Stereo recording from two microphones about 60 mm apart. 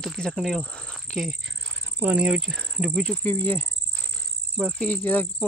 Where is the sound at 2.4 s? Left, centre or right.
Centre.